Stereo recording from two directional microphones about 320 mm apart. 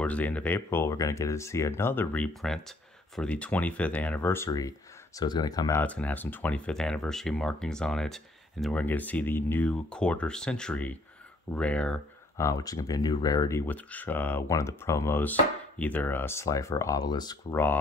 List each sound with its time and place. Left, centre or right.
0.0 s speech: centre